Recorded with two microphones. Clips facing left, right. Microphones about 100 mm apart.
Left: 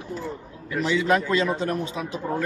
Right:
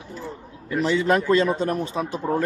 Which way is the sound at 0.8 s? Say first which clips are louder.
Right 1 dB; 40° right (ahead or behind).